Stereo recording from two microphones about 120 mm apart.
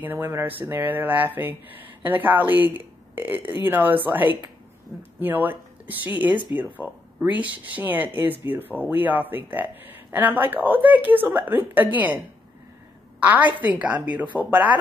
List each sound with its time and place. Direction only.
0.0 s speech: 15° right (ahead or behind)
13.2 s speech: 15° right (ahead or behind)